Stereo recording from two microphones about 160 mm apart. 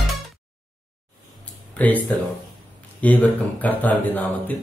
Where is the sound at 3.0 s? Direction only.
10° left (ahead or behind).